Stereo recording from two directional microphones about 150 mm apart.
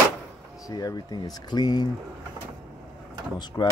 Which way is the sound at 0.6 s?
25° left (ahead or behind).